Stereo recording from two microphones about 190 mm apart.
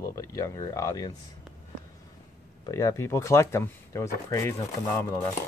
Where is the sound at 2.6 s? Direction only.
15° left (ahead or behind).